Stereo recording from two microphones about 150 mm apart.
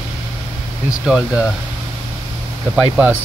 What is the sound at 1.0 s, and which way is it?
Speech, 5° right (ahead or behind).